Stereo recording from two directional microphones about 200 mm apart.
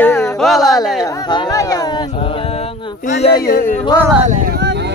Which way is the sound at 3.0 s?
35° left (ahead or behind).